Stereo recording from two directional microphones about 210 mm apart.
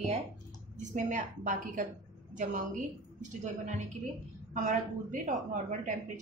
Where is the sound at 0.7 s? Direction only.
35° right (ahead or behind).